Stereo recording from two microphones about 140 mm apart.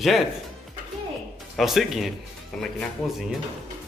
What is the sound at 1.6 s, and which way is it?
Speech, centre (ahead or behind).